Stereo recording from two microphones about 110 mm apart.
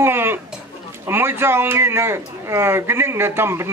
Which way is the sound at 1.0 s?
20° right (ahead or behind).